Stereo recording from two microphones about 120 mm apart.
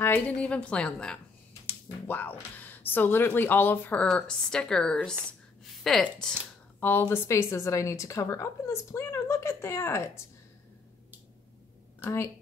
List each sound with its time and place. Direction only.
0.0 s a woman's voice: 15° left (ahead or behind)
6.8 s a woman's voice: 15° left (ahead or behind)